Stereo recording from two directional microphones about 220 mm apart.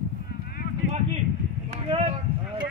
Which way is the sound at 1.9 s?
25° right (ahead or behind).